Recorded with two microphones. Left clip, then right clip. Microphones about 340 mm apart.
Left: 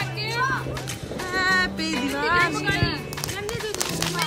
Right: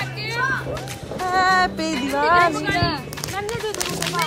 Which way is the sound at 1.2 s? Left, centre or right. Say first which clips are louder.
Right 5 dB; centre.